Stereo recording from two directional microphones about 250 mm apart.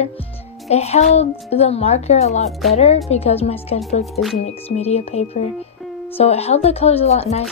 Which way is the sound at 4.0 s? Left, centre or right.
Centre.